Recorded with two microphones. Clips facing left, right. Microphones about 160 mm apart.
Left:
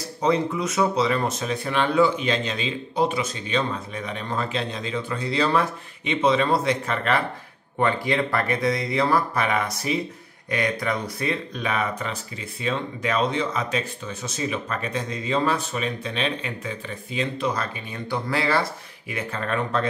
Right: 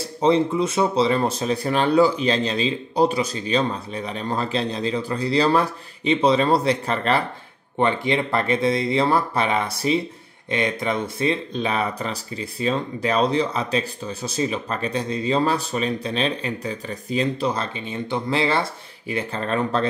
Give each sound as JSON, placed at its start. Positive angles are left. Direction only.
{"t": 0.2, "sound": "speech", "side_deg": -30}
{"t": 7.8, "sound": "speech", "side_deg": -20}